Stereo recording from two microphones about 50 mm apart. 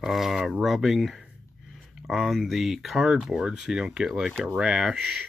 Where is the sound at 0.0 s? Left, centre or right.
Centre.